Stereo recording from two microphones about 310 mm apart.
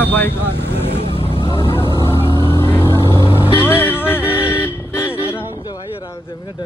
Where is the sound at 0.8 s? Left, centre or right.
Centre.